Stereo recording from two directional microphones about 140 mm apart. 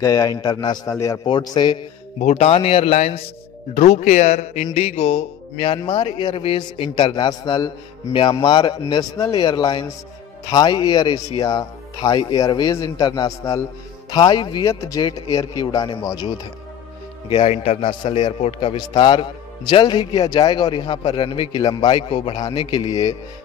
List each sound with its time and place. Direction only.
0.0 s speech: 25° left (ahead or behind)
1.2 s a man's voice: 30° left (ahead or behind)
2.2 s music: 50° left (ahead or behind)
3.7 s speech: 55° left (ahead or behind)
4.7 s music: 45° left (ahead or behind)
5.8 s a man's voice: 35° left (ahead or behind)
17.3 s a man's voice: 45° left (ahead or behind)